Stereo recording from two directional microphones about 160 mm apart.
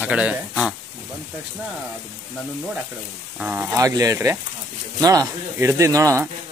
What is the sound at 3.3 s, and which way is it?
Speech, 10° right (ahead or behind).